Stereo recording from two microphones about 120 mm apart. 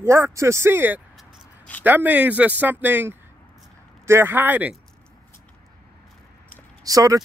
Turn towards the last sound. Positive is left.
turn(degrees=-30)  # may be behind; listen again after turning